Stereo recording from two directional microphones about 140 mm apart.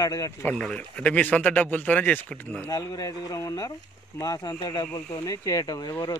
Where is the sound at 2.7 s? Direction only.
30° left (ahead or behind).